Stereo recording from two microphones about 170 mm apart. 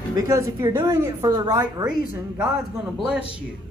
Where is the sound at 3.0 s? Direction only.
5° right (ahead or behind).